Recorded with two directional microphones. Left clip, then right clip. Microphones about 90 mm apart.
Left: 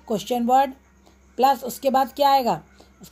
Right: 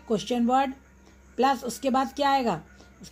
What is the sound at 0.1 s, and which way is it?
Speech, 45° left (ahead or behind).